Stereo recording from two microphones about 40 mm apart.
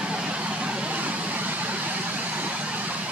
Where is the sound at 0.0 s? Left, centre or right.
Right.